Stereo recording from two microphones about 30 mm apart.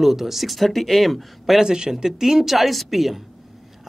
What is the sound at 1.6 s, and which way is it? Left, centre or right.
Speech, right.